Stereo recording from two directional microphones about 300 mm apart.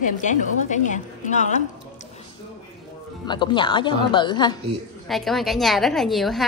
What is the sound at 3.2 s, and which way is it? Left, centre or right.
A woman's voice, centre.